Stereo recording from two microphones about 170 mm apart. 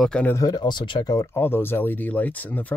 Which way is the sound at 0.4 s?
25° left (ahead or behind).